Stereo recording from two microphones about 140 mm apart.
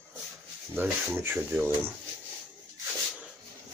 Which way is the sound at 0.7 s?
15° right (ahead or behind).